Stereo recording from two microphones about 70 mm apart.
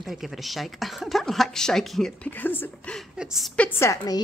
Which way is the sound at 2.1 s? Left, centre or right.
Left.